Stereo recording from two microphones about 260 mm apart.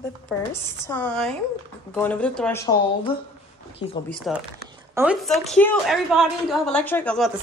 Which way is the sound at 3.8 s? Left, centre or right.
Centre.